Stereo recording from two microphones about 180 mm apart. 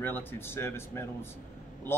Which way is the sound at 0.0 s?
10° left (ahead or behind).